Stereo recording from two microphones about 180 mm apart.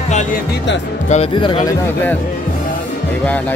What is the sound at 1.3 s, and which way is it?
Speech, 25° left (ahead or behind).